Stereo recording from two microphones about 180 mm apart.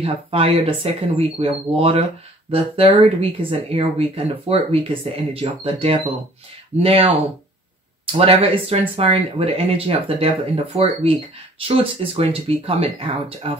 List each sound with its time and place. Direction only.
0.0 s speech: 35° right (ahead or behind)
8.3 s speech: 30° right (ahead or behind)